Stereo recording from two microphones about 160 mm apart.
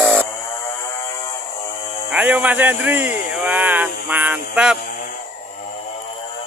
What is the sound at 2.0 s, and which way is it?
Speech, 10° right (ahead or behind).